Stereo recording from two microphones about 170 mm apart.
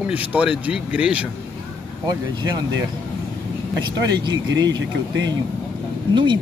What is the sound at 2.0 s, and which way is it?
Speech, 25° right (ahead or behind).